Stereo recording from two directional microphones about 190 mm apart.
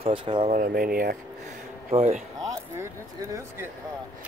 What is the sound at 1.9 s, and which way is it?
Speech, 30° right (ahead or behind).